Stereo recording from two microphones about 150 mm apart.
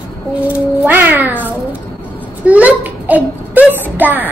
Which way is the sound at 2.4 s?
10° right (ahead or behind).